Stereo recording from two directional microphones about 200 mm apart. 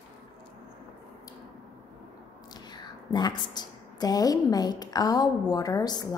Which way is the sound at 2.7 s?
20° left (ahead or behind).